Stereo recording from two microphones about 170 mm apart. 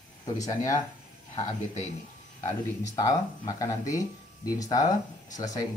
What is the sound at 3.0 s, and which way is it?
Speech, 20° left (ahead or behind).